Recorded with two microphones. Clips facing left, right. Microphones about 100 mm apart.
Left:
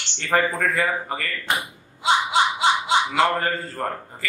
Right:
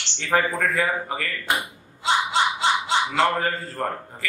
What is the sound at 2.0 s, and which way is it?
Snicker, 15° left (ahead or behind).